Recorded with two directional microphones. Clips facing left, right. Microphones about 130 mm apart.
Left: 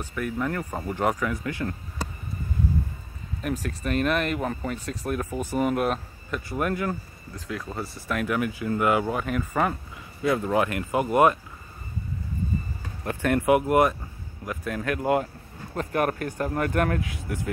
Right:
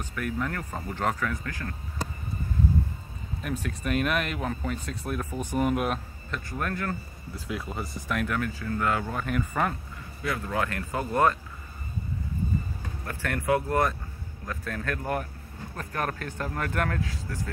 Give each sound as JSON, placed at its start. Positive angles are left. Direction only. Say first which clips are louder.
{"t": 0.0, "sound": "speech", "louder": "left 3 dB", "side_deg": 5}
{"t": 3.6, "sound": "speech", "louder": "left 2 dB", "side_deg": -5}
{"t": 6.5, "sound": "speech", "louder": "left 5 dB", "side_deg": 10}
{"t": 7.3, "sound": "speech", "louder": "left 1 dB", "side_deg": -15}
{"t": 7.7, "sound": "speech", "louder": "left 3 dB", "side_deg": 0}
{"t": 9.2, "sound": "speech", "louder": "left 2 dB", "side_deg": 5}
{"t": 10.2, "sound": "speech", "louder": "left 6 dB", "side_deg": 20}
{"t": 13.0, "sound": "speech", "louder": "left 8 dB", "side_deg": 20}
{"t": 15.7, "sound": "speech", "louder": "left 10 dB", "side_deg": 25}
{"t": 16.0, "sound": "speech", "louder": "left 5 dB", "side_deg": 15}